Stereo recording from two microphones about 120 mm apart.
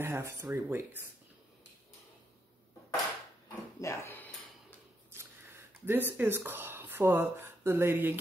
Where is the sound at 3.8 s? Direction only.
20° left (ahead or behind).